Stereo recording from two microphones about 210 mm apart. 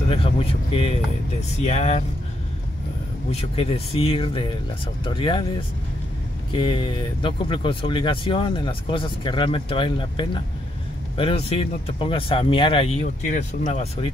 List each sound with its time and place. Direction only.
0.1 s speech: 25° left (ahead or behind)
3.3 s speech: 30° left (ahead or behind)
6.5 s speech: 20° left (ahead or behind)